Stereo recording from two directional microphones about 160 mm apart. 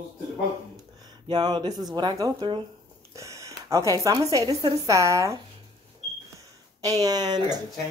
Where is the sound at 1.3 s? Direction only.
25° right (ahead or behind).